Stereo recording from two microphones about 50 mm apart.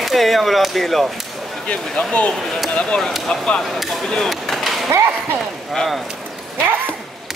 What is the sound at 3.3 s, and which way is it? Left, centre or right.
Speech, centre.